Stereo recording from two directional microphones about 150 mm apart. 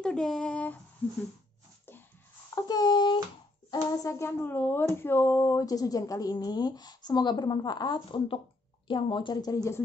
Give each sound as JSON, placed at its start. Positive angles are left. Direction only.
{"t": 0.0, "sound": "speech", "side_deg": 5}
{"t": 1.0, "sound": "a sound", "side_deg": 10}
{"t": 2.5, "sound": "a child's voice", "side_deg": 25}